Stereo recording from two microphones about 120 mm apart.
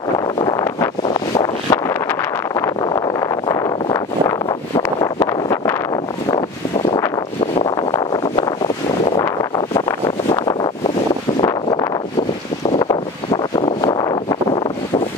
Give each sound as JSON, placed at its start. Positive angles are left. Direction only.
{"t": 0.4, "sound": "wind noise", "side_deg": 30}
{"t": 7.6, "sound": "wind noise", "side_deg": 30}
{"t": 9.6, "sound": "wind noise", "side_deg": 30}
{"t": 12.7, "sound": "wind noise", "side_deg": 35}